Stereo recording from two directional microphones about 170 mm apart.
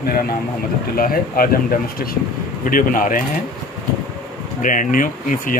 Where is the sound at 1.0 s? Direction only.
60° left (ahead or behind).